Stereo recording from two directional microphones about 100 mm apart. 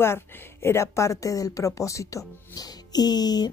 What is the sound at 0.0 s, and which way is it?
Speech, 25° left (ahead or behind).